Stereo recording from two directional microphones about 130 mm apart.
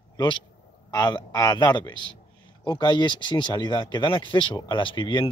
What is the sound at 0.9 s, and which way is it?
Speech, 30° left (ahead or behind).